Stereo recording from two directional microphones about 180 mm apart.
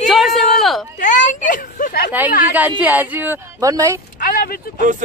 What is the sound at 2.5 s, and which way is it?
A woman's voice, 10° right (ahead or behind).